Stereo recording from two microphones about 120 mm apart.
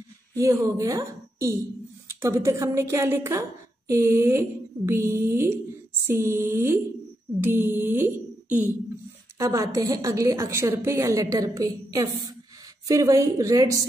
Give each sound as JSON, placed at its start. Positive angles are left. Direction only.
{"t": 0.4, "sound": "a woman's voice", "side_deg": -25}
{"t": 9.4, "sound": "a woman's voice", "side_deg": -30}